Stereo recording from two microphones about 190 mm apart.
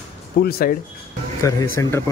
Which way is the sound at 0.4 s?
55° left (ahead or behind).